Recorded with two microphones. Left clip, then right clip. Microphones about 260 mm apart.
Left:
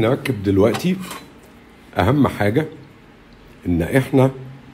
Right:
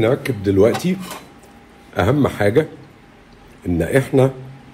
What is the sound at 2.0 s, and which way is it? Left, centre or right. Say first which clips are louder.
Speech: even; left.